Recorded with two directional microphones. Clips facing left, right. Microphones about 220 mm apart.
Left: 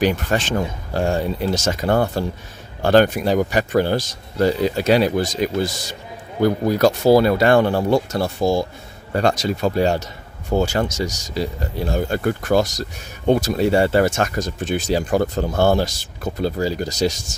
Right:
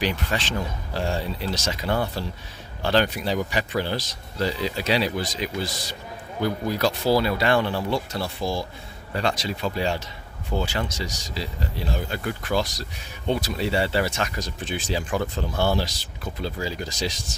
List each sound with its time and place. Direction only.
0.0 s speech: 45° left (ahead or behind)